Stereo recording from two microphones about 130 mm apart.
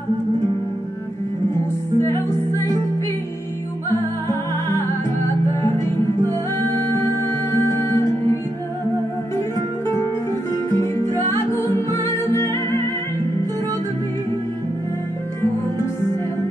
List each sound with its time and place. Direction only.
1.5 s music: 20° left (ahead or behind)
7.0 s music: 20° left (ahead or behind)
10.7 s music: 20° left (ahead or behind)